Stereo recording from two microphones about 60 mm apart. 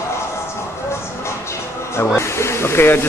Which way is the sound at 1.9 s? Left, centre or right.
Left.